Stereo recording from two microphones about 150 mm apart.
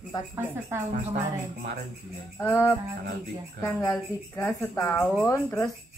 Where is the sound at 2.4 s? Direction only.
15° left (ahead or behind).